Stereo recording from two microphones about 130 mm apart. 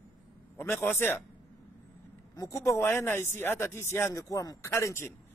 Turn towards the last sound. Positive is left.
turn(degrees=20)  # may be behind; listen again after turning